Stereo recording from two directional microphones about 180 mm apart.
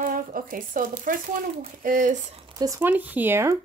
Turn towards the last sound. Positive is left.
turn(degrees=-15)  # may be behind; listen again after turning